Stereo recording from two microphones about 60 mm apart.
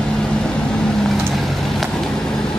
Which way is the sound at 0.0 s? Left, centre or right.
Centre.